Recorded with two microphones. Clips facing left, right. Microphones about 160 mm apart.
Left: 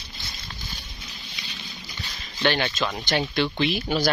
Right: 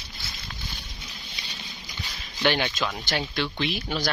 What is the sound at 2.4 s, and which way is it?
Speech, 10° right (ahead or behind).